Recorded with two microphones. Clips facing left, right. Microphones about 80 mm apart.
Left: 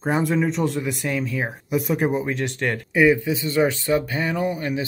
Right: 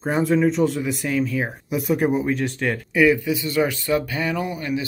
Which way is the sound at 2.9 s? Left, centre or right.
Left.